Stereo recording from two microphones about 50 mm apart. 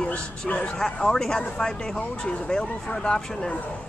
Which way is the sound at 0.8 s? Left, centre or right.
Centre.